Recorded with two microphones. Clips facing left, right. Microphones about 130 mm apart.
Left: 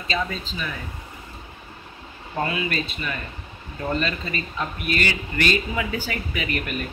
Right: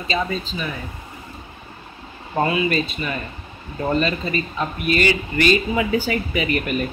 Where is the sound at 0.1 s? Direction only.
10° right (ahead or behind).